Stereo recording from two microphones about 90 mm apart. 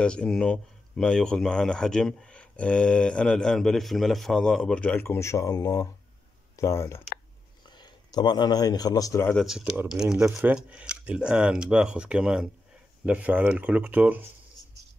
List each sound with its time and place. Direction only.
0.0 s speech: 10° left (ahead or behind)
5.0 s speech: 30° left (ahead or behind)
6.5 s speech: 30° left (ahead or behind)
7.6 s speech: 55° left (ahead or behind)
9.8 s speech: 5° right (ahead or behind)